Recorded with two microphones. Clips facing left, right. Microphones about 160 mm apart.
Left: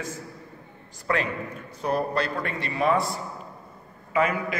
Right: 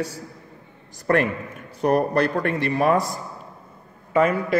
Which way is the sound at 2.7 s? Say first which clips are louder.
Right 2 dB; 45° right (ahead or behind).